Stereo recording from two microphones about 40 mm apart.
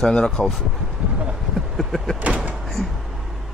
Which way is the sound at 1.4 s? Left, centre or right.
Centre.